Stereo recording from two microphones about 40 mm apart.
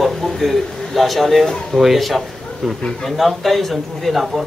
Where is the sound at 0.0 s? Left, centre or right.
Centre.